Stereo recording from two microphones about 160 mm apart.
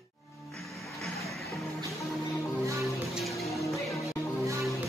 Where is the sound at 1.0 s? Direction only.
Centre (ahead or behind).